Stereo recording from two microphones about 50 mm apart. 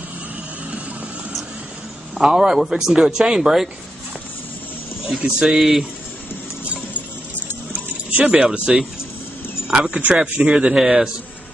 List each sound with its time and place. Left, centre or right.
2.1 s speech: centre
5.2 s speech: centre
5.6 s speech: centre
8.1 s speech: right; by 11.1 s centre